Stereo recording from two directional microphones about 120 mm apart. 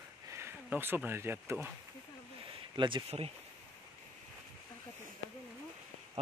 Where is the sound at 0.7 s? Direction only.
15° right (ahead or behind).